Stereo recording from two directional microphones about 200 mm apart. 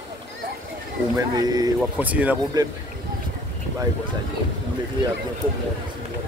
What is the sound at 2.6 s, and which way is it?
Speech, 20° right (ahead or behind).